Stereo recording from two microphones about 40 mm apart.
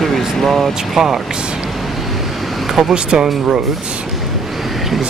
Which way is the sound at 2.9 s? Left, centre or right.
Right.